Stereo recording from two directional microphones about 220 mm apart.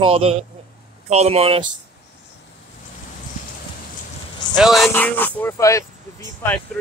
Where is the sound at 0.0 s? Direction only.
25° right (ahead or behind).